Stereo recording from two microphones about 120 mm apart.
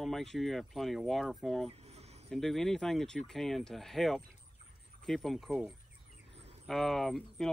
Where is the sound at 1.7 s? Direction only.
60° right (ahead or behind).